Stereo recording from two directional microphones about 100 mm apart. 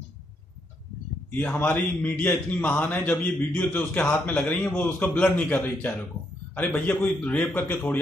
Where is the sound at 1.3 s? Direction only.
20° left (ahead or behind).